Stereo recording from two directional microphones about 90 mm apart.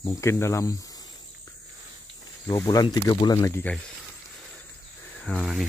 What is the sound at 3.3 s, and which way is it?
Speech, 35° left (ahead or behind).